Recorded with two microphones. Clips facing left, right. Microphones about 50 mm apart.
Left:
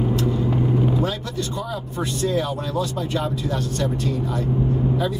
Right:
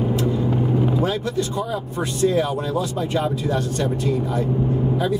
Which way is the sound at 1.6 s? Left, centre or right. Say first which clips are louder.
Right 3 dB; right.